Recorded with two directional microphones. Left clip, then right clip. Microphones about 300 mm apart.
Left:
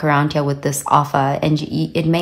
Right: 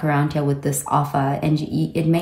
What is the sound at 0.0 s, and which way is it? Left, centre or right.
Speech, centre.